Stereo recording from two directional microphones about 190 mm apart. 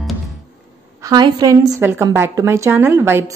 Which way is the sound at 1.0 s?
20° right (ahead or behind).